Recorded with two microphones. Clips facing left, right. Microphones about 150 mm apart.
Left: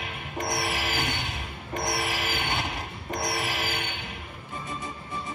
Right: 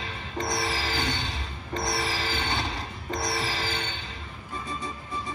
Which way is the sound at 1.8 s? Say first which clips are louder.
Even; 20° left (ahead or behind).